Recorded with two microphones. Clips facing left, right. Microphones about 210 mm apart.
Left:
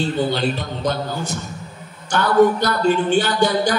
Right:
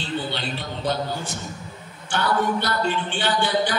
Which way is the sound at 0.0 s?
45° left (ahead or behind).